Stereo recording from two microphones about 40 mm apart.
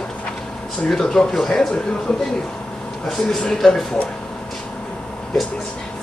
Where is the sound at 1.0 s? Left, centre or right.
Centre.